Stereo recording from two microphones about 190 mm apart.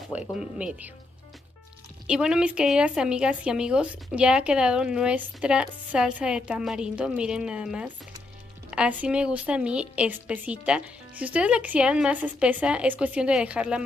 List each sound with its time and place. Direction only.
0.1 s speech: 5° right (ahead or behind)
2.0 s a woman's voice: 5° right (ahead or behind)